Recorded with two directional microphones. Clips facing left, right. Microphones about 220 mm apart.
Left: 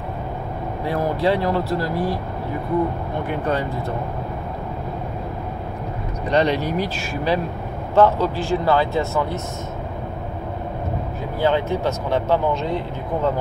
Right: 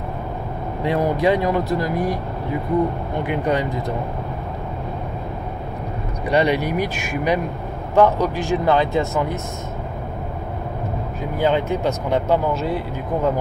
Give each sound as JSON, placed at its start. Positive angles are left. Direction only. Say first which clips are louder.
{"t": 0.8, "sound": "speech", "louder": "right 2 dB", "side_deg": -20}
{"t": 3.3, "sound": "speech", "louder": "right 2 dB", "side_deg": -15}
{"t": 6.2, "sound": "speech", "louder": "right 1 dB", "side_deg": -10}
{"t": 11.3, "sound": "speech", "louder": "right 1 dB", "side_deg": -15}